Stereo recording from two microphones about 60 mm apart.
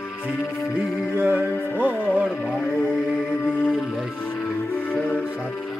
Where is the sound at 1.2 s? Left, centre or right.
Right.